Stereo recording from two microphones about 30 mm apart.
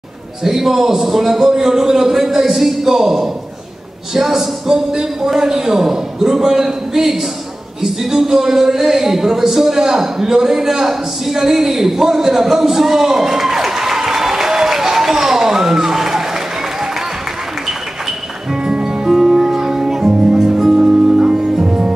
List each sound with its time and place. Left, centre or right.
0.4 s a man's voice: centre
18.5 s music: right
19.0 s music: centre